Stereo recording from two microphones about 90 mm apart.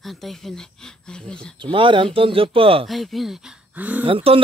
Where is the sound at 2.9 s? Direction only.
Centre (ahead or behind).